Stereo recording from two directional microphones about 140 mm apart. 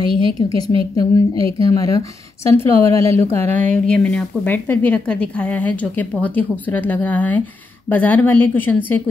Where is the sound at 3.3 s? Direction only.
55° right (ahead or behind).